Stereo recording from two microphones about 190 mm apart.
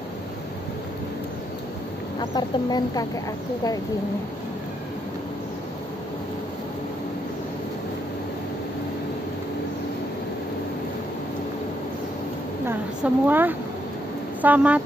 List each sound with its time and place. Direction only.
2.3 s speech: 20° left (ahead or behind)
12.6 s a woman's voice: 10° right (ahead or behind)